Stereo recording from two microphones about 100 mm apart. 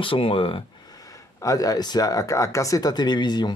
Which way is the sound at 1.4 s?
35° left (ahead or behind).